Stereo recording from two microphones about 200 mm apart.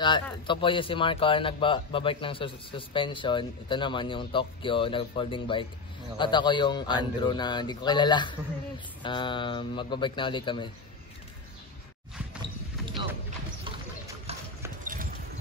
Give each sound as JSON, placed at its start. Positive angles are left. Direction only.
{"t": 0.0, "sound": "speech", "side_deg": 25}
{"t": 13.7, "sound": "clip-clop", "side_deg": -25}
{"t": 14.8, "sound": "a sound", "side_deg": -40}